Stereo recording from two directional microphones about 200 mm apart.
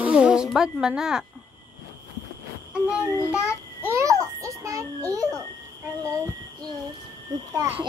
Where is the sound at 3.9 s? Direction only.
15° right (ahead or behind).